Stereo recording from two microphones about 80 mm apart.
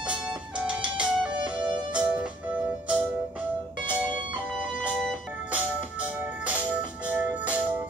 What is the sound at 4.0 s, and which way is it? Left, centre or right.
Music, centre.